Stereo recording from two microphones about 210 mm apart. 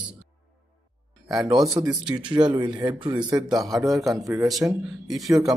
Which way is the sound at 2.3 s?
20° right (ahead or behind).